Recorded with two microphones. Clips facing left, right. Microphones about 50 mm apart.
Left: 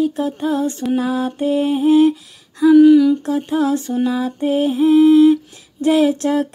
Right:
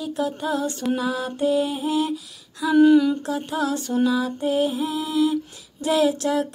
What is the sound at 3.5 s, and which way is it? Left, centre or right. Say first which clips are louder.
Music: left 7 dB; left.